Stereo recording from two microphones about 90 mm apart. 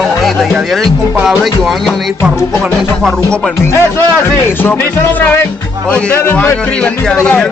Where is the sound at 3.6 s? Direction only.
30° left (ahead or behind).